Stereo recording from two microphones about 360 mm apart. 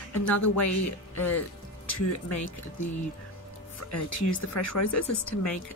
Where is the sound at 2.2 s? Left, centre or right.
Left.